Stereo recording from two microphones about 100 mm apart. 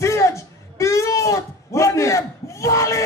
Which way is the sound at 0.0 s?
30° left (ahead or behind).